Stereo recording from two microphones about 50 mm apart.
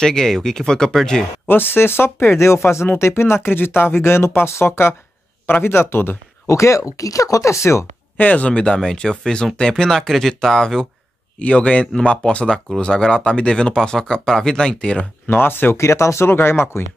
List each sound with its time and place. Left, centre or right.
0.0 s speech: centre
1.5 s speech: left
2.3 s speech: left
3.4 s speech: left
6.4 s speech: left
8.2 s a man's voice: left
8.7 s speech: centre
11.3 s a man's voice: left
12.7 s speech: centre
15.2 s speech: left
15.8 s speech: left
16.3 s speech: left